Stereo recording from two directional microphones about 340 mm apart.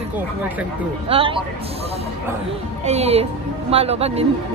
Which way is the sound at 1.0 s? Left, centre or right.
Centre.